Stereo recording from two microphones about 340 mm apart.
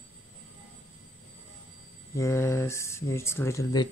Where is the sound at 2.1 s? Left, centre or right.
Centre.